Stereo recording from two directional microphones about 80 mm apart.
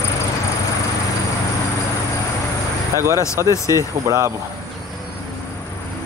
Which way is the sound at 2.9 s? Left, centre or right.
Right.